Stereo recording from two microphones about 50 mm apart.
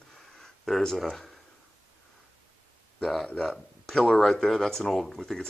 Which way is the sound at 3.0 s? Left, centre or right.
Centre.